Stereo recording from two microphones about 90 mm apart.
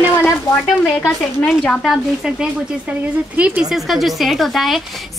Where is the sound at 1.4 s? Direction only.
5° left (ahead or behind).